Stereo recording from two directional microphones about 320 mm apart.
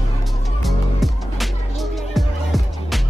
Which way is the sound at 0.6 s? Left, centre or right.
Centre.